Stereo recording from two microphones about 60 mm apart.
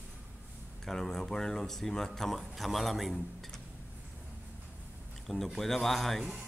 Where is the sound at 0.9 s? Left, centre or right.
Centre.